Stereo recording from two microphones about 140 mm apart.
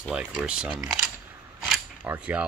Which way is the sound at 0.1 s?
5° right (ahead or behind).